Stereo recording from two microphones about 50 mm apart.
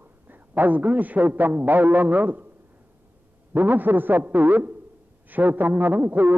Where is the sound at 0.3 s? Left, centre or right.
Right.